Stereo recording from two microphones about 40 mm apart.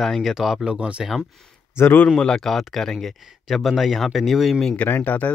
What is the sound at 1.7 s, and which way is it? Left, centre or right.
Speech, left.